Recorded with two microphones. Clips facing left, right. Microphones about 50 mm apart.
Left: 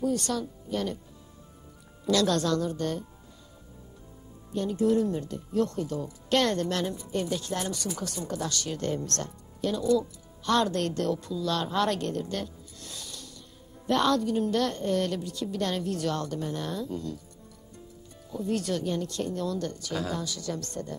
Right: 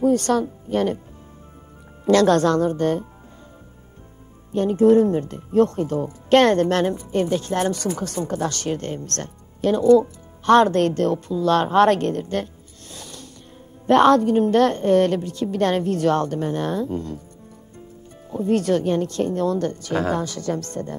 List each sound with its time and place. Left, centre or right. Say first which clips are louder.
0.0 s speech: right 10 dB; right
2.0 s speech: right 9 dB; right
4.5 s speech: right 10 dB; right
18.3 s speech: right 10 dB; right